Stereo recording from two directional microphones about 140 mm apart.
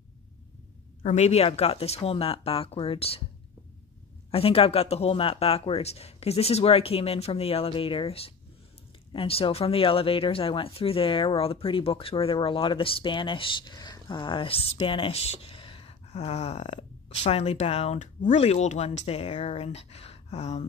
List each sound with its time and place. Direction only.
1.0 s speech: 55° left (ahead or behind)
4.3 s speech: 45° left (ahead or behind)